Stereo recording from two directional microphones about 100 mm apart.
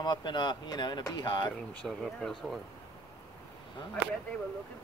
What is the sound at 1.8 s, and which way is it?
Speech, 5° left (ahead or behind).